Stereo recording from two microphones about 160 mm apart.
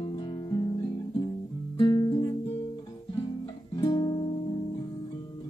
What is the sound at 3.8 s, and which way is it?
Guitar, 25° left (ahead or behind).